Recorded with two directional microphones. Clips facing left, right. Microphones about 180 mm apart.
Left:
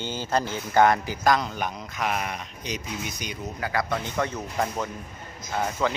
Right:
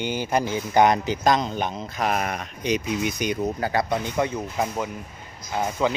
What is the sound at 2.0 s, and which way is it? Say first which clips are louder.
Speech: right 4 dB; 45° right (ahead or behind).